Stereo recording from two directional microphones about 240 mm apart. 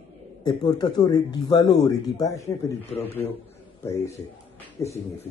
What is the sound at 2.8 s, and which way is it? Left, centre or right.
Speech, left.